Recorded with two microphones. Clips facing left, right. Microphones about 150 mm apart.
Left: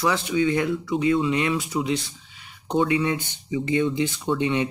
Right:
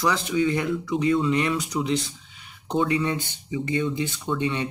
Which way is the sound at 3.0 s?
15° left (ahead or behind).